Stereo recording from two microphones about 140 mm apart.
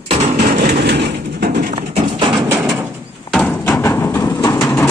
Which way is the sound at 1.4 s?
80° right.